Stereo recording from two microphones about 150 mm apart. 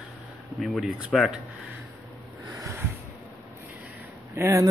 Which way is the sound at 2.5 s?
15° right (ahead or behind).